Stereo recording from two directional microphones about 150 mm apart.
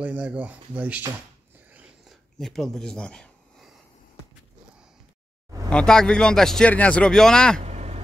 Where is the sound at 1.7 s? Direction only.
10° right (ahead or behind).